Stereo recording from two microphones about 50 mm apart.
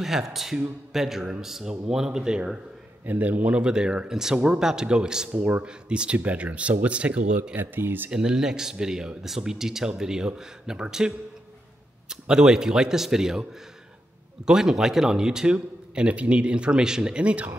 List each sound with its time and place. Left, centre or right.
0.0 s speech: centre
3.1 s a man's voice: right
3.6 s speech: centre
5.3 s a man's voice: right
5.7 s speech: centre
7.5 s speech: right
8.1 s speech: centre
14.4 s speech: centre